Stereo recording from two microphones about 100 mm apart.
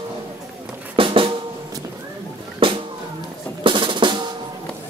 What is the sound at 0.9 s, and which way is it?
Drum, 60° right (ahead or behind).